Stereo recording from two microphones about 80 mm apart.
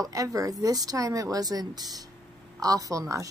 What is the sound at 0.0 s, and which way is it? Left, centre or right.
Speech, right.